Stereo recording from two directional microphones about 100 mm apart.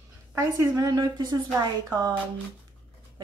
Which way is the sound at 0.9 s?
45° right (ahead or behind).